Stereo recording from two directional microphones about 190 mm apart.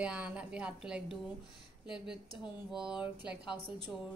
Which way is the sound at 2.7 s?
5° right (ahead or behind).